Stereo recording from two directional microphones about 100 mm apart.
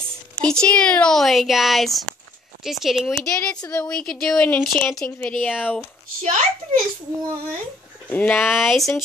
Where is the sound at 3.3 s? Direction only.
20° left (ahead or behind).